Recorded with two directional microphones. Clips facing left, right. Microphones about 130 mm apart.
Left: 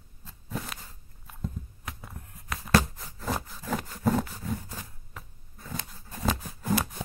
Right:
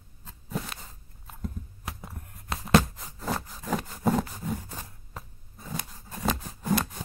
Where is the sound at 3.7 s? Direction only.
5° right (ahead or behind).